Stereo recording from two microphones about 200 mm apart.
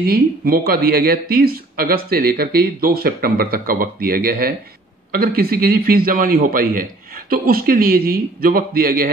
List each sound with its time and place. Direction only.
0.0 s speech: 45° right (ahead or behind)